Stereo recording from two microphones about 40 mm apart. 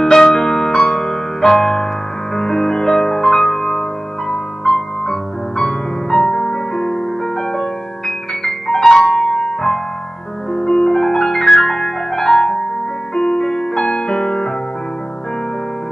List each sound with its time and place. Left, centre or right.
0.0 s music: centre
13.1 s piano: centre